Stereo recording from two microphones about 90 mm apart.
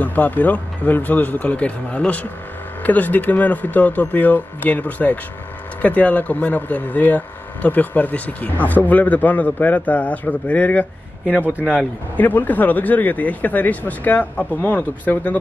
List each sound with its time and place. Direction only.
0.0 s speech: 20° left (ahead or behind)
11.4 s a man's voice: 20° right (ahead or behind)
12.2 s speech: 20° left (ahead or behind)